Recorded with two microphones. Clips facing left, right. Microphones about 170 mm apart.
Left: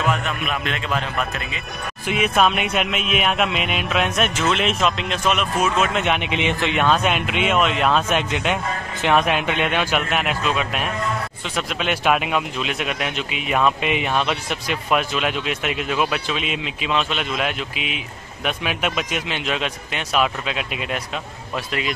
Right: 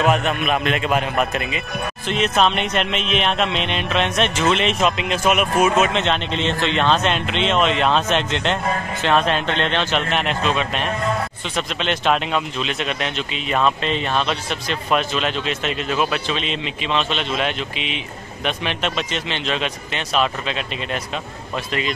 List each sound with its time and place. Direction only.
0.1 s a man's voice: 20° right (ahead or behind)
2.0 s speech: 10° left (ahead or behind); by 5.9 s 10° right (ahead or behind)
5.9 s speech: 10° left (ahead or behind)